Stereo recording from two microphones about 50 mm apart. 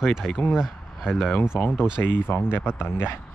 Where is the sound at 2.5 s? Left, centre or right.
Left.